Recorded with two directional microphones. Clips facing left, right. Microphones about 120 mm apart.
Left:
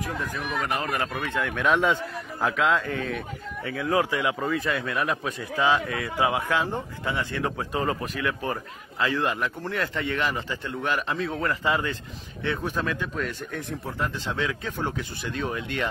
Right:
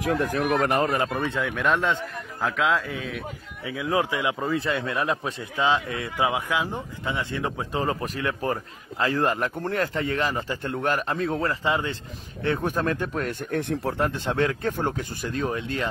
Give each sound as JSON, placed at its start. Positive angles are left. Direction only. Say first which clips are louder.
{"t": 0.0, "sound": "speech", "louder": "right 7 dB", "side_deg": -90}
{"t": 0.6, "sound": "speech", "louder": "right 4 dB", "side_deg": -50}
{"t": 0.9, "sound": "a man's voice", "louder": "right 3 dB", "side_deg": -20}
{"t": 1.5, "sound": "a man's voice", "louder": "left 3 dB", "side_deg": 0}
{"t": 3.6, "sound": "a man's voice", "louder": "even", "side_deg": -15}
{"t": 11.4, "sound": "a man's voice", "louder": "even", "side_deg": -25}
{"t": 12.4, "sound": "speech", "louder": "right 3 dB", "side_deg": -45}